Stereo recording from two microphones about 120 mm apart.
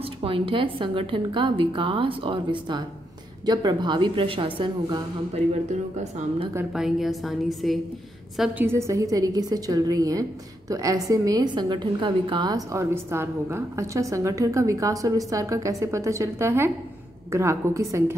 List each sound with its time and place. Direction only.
0.0 s a woman's voice: 50° right (ahead or behind)
5.3 s speech: 75° right (ahead or behind)
6.7 s a woman's voice: 5° right (ahead or behind)
8.5 s a woman's voice: 20° right (ahead or behind)
12.7 s a woman's voice: 20° right (ahead or behind)